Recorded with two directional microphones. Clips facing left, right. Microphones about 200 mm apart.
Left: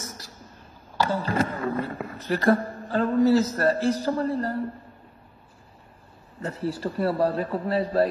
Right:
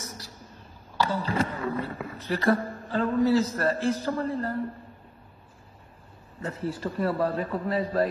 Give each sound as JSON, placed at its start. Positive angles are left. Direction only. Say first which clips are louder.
{"t": 0.9, "sound": "speech", "louder": "left 2 dB", "side_deg": 45}
{"t": 6.4, "sound": "a man's voice", "louder": "left 2 dB", "side_deg": 35}